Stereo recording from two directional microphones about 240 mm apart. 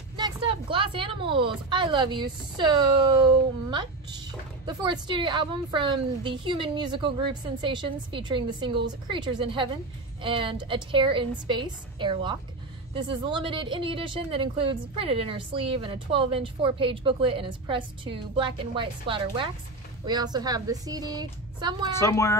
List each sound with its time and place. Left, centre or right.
0.2 s a woman's voice: right
21.9 s speech: centre